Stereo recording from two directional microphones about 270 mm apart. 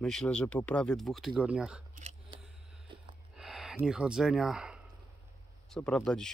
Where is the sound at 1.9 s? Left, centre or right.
Right.